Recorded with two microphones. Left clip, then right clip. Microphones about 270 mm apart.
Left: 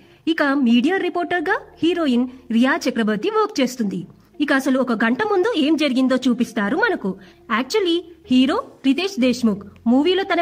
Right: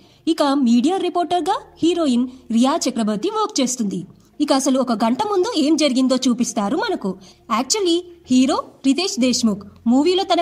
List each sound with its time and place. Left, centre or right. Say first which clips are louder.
0.2 s a woman's voice: right 1 dB; centre